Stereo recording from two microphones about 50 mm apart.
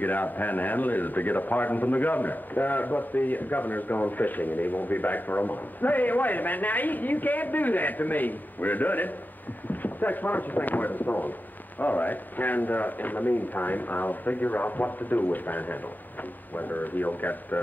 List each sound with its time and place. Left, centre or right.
0.0 s a man's voice: left